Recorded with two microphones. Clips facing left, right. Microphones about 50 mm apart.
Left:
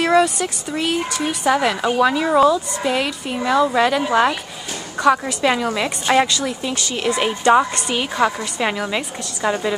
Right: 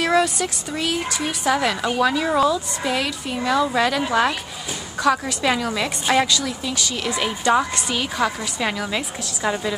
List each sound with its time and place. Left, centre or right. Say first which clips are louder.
0.0 s speech: left 3 dB; centre